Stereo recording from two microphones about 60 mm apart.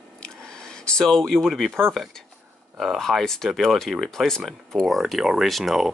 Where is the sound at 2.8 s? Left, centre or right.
Centre.